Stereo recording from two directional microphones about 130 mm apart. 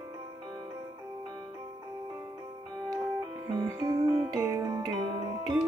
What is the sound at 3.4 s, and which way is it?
Music, 30° right (ahead or behind).